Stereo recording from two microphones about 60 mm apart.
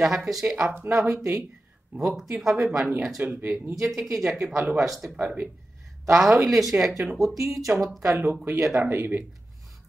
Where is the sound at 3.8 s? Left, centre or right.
Centre.